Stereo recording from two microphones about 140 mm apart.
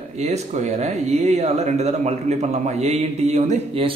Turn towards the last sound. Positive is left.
turn(degrees=-45)  # may be behind; listen again after turning